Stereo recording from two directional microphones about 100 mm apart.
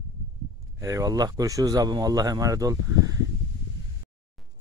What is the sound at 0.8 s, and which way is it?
Speech, 35° right (ahead or behind).